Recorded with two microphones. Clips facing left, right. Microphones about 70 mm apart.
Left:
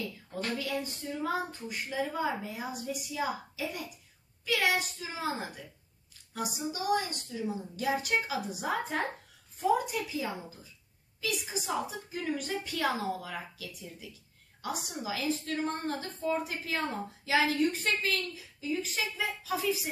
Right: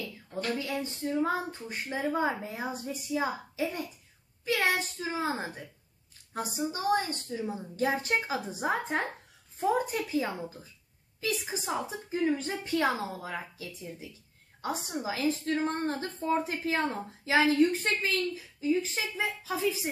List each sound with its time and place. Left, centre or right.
1.2 s a woman's voice: right